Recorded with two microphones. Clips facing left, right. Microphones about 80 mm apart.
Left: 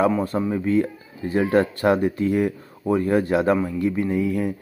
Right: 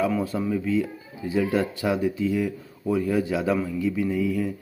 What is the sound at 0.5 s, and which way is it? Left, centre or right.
Speech, left.